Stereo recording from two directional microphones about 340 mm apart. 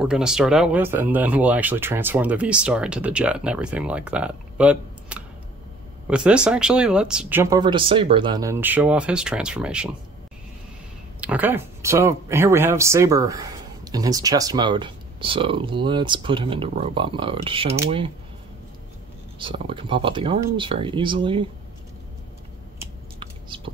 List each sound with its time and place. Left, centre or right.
0.0 s speech: centre
11.1 s speech: centre
19.3 s speech: centre
22.8 s a sound: centre